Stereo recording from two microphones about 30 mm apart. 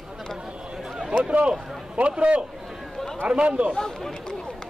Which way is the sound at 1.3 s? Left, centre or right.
Right.